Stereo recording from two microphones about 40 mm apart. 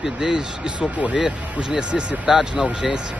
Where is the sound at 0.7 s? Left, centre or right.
Right.